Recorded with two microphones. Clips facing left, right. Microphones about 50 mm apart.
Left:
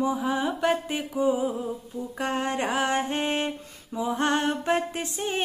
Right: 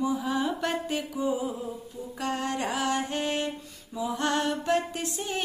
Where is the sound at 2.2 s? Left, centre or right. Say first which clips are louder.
Left 2 dB; left.